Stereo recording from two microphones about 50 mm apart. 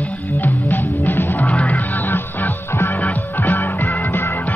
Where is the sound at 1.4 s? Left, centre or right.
Left.